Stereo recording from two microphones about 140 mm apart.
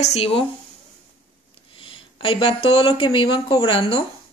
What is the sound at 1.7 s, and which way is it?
Speech, 40° left (ahead or behind).